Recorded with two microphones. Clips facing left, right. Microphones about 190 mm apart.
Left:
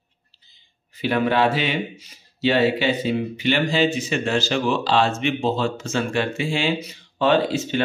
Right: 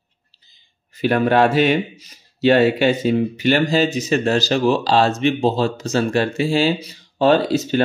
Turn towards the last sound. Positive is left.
turn(degrees=-40)  # may be behind; listen again after turning